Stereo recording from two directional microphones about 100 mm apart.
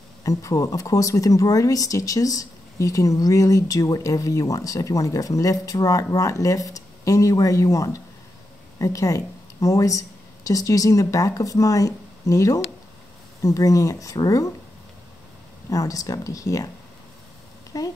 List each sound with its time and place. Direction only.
0.2 s speech: 35° left (ahead or behind)
15.7 s speech: 35° left (ahead or behind)
17.7 s speech: 35° left (ahead or behind)